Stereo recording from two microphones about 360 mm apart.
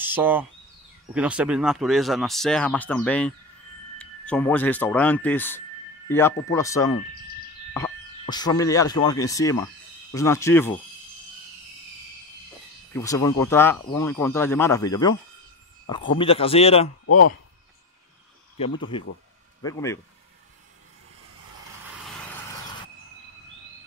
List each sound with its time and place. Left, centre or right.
0.0 s speech: centre
12.9 s speech: centre
18.6 s speech: centre